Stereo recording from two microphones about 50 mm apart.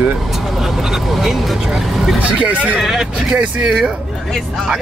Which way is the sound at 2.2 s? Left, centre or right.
Right.